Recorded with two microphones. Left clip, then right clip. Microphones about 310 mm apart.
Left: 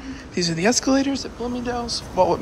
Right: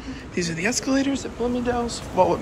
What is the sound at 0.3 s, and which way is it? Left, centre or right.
Speech, centre.